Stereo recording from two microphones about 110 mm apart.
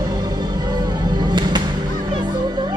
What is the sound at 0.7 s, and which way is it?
Music, 40° right (ahead or behind).